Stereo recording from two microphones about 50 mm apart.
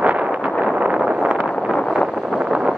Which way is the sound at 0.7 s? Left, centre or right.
Right.